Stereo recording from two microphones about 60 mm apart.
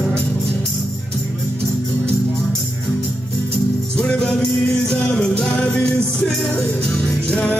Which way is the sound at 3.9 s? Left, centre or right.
Centre.